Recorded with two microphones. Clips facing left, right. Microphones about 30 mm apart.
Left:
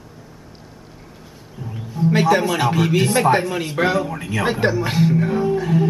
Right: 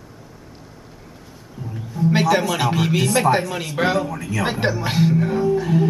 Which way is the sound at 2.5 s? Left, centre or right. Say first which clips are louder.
Left 2 dB; centre.